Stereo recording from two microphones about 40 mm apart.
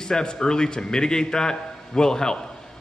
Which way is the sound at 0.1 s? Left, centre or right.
Centre.